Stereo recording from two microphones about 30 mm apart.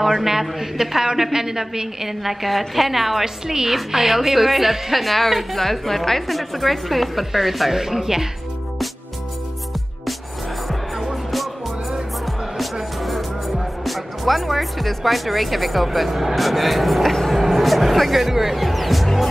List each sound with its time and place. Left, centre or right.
0.2 s a woman's voice: centre
7.7 s a woman's voice: centre
13.8 s a woman's voice: centre
17.3 s music: centre